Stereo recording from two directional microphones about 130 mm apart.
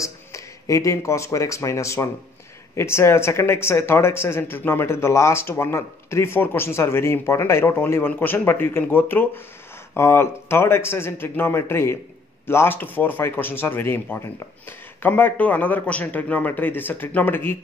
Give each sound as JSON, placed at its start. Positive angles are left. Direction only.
{"t": 0.0, "sound": "a man's voice", "side_deg": 25}